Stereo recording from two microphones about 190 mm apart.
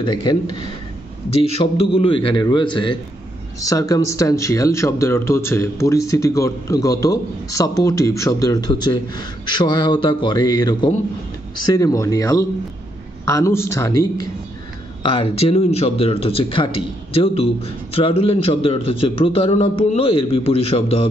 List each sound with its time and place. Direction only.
0.0 s a man's voice: 20° left (ahead or behind)
1.3 s a man's voice: 30° left (ahead or behind); by 14.2 s 15° left (ahead or behind)
15.0 s a man's voice: 30° left (ahead or behind)